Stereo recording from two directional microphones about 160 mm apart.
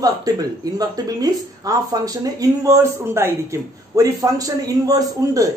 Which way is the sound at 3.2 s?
15° right (ahead or behind).